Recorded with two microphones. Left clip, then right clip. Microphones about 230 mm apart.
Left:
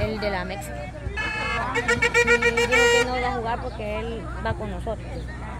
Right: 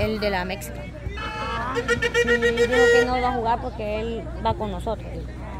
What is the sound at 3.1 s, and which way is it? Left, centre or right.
Speech, right.